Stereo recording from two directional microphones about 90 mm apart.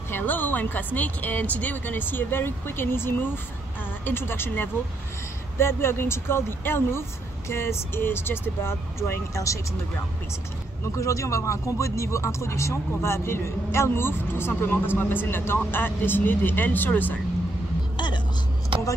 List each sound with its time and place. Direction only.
0.1 s speech: 20° left (ahead or behind); by 9.6 s 35° left (ahead or behind)
11.0 s speech: 35° left (ahead or behind); by 17.2 s 20° left (ahead or behind)
17.9 s vehicle: 60° left (ahead or behind)